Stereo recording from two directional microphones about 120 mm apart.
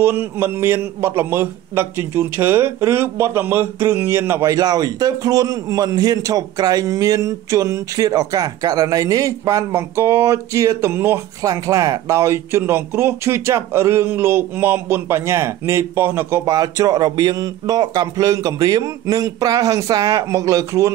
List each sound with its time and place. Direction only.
0.0 s a man's voice: 20° right (ahead or behind)
16.5 s a man's voice: 30° right (ahead or behind)